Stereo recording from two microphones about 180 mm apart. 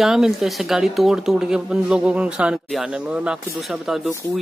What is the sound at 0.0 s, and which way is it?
A man's voice, centre (ahead or behind).